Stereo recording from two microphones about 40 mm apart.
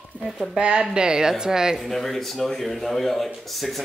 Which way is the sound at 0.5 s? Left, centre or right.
Right.